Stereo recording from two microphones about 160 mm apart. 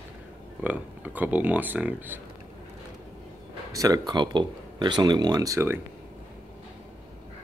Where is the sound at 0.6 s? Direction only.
10° right (ahead or behind).